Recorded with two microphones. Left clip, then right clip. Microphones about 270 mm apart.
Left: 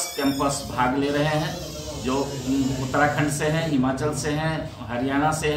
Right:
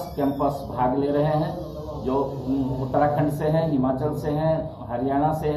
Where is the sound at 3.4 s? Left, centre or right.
Left.